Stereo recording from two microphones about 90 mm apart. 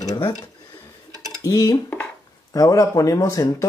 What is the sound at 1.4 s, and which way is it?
Speech, 40° left (ahead or behind).